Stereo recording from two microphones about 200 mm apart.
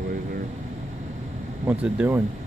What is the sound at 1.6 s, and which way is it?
Speech, 10° right (ahead or behind).